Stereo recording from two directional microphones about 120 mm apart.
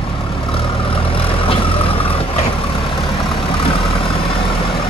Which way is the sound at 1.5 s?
50° left (ahead or behind).